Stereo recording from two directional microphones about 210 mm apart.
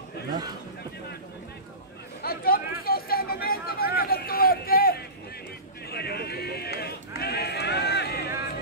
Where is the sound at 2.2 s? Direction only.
45° left (ahead or behind).